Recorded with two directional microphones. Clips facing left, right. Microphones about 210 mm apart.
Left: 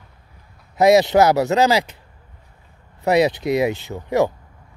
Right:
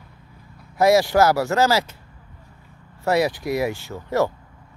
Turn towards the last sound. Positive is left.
turn(degrees=15)  # may be behind; listen again after turning